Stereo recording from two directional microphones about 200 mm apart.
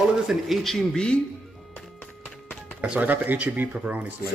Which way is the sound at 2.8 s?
5° right (ahead or behind).